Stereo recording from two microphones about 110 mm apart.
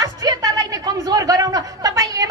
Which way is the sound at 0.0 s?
35° right (ahead or behind).